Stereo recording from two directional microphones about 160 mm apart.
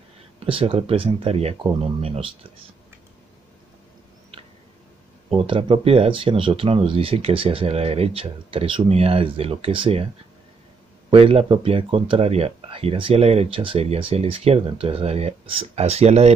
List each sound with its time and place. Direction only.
0.5 s speech: 35° right (ahead or behind)
5.3 s speech: 35° right (ahead or behind)
11.1 s speech: 35° right (ahead or behind)